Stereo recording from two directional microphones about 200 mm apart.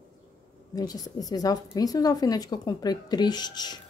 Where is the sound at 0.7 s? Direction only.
20° left (ahead or behind).